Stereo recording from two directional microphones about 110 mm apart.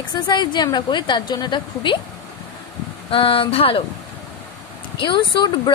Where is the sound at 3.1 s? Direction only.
55° left (ahead or behind).